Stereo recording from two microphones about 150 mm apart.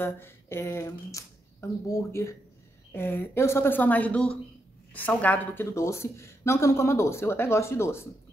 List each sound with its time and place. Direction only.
0.0 s speech: 15° left (ahead or behind)